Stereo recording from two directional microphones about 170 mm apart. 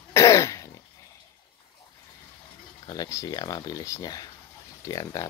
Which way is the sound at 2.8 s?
20° left (ahead or behind).